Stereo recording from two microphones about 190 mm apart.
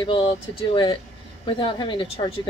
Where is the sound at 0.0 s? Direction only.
25° left (ahead or behind).